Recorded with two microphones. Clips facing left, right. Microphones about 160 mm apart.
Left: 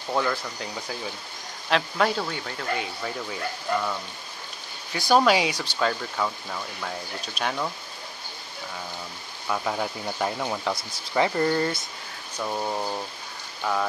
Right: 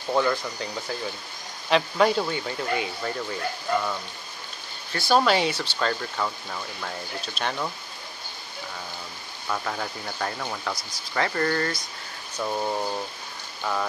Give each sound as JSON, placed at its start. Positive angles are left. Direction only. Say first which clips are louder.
{"t": 0.1, "sound": "speech", "louder": "right 3 dB", "side_deg": 0}
{"t": 4.9, "sound": "speech", "louder": "left 1 dB", "side_deg": 15}
{"t": 9.5, "sound": "speech", "louder": "left 2 dB", "side_deg": 10}
{"t": 10.7, "sound": "speech", "louder": "left 4 dB", "side_deg": 25}
{"t": 11.2, "sound": "speech", "louder": "even", "side_deg": 15}
{"t": 12.4, "sound": "speech", "louder": "right 1 dB", "side_deg": -5}